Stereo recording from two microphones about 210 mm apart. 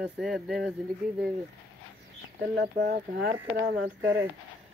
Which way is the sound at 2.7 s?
45° right (ahead or behind).